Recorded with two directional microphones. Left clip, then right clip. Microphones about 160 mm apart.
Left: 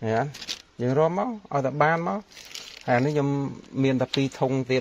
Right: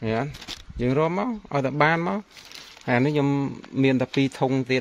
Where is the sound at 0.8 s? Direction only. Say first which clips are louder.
Even; 25° right (ahead or behind); by 2.2 s 45° right (ahead or behind).